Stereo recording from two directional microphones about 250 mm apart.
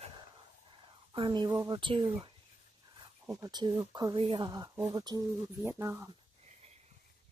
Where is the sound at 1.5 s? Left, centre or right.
Centre.